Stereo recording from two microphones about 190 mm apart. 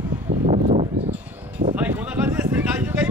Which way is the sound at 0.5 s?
35° right (ahead or behind).